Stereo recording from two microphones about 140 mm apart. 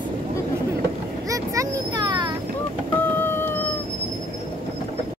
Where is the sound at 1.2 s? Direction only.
25° right (ahead or behind).